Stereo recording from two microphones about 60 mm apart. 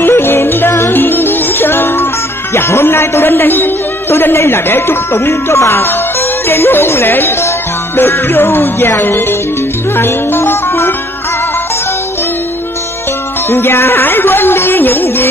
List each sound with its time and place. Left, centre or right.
0.0 s music: left
2.5 s a man's voice: left
5.3 s a man's voice: left
9.9 s music: left
13.5 s a man's voice: left